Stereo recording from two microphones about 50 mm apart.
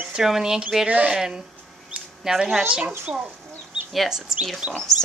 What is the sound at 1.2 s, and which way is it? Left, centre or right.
A woman's voice, centre.